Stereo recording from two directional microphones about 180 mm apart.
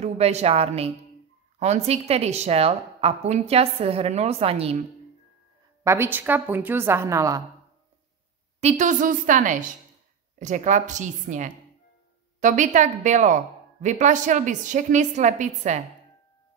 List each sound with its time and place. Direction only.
0.0 s a woman's voice: 35° right (ahead or behind)
5.9 s a woman's voice: 10° right (ahead or behind)
8.5 s a woman's voice: 40° right (ahead or behind)